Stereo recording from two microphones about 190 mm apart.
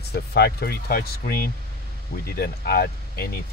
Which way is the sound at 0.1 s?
60° left (ahead or behind).